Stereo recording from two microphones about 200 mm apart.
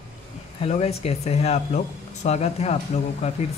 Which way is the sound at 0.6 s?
30° left (ahead or behind).